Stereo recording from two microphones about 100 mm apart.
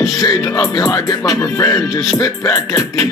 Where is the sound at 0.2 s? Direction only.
35° left (ahead or behind).